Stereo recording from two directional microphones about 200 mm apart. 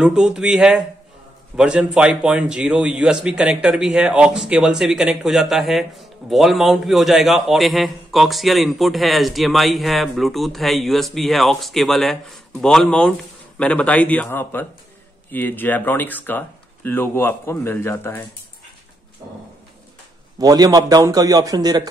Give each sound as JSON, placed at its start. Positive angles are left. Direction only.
{"t": 0.0, "sound": "a man's voice", "side_deg": -5}
{"t": 20.3, "sound": "a man's voice", "side_deg": -20}